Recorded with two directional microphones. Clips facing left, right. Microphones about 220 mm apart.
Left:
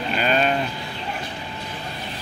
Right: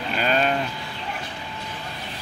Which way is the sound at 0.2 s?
5° left (ahead or behind).